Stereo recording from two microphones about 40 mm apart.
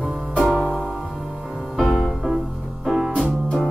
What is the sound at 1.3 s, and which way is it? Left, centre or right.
Music, right.